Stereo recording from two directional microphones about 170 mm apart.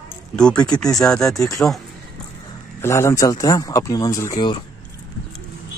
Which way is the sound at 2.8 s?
15° left (ahead or behind).